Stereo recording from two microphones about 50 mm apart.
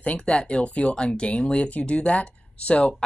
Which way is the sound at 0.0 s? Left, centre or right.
Left.